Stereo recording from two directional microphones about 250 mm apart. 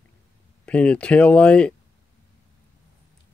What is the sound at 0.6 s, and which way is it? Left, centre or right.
Speech, centre.